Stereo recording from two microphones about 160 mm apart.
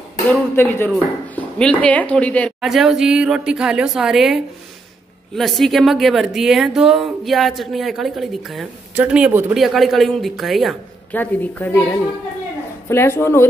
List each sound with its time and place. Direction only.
0.3 s a woman's voice: 10° left (ahead or behind)
2.6 s speech: centre (ahead or behind)
11.1 s a woman's voice: 10° left (ahead or behind)